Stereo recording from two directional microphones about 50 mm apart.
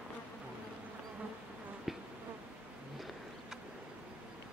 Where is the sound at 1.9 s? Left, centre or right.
Centre.